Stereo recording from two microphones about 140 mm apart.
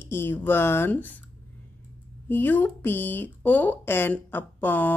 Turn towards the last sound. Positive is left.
turn(degrees=15)  # may be behind; listen again after turning